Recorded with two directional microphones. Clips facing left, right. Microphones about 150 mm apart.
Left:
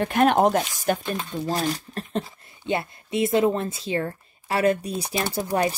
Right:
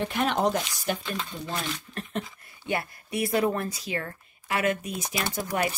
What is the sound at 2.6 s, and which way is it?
Speech, 25° left (ahead or behind).